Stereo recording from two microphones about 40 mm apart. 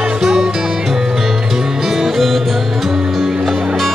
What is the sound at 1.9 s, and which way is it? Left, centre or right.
Music, centre.